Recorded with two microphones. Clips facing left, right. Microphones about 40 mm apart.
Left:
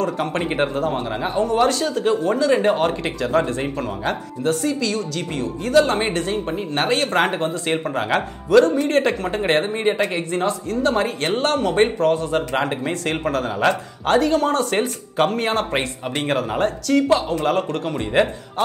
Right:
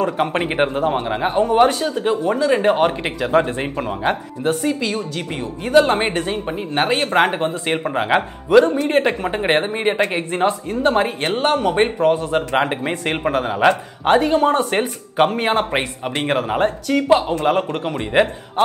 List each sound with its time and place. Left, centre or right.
0.0 s speech: right